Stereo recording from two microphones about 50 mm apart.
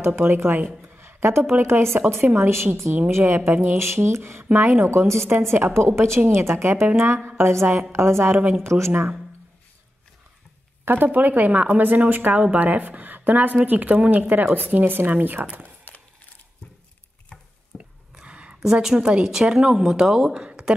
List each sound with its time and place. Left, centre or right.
0.0 s a woman's voice: right
0.8 s a sound: right
1.5 s a woman's voice: right
4.8 s a woman's voice: right
5.5 s a woman's voice: right
8.6 s speech: right
10.9 s a woman's voice: right
14.2 s a woman's voice: right
17.7 s a sound: centre
18.2 s a sound: right
18.6 s a woman's voice: centre
20.4 s a sound: centre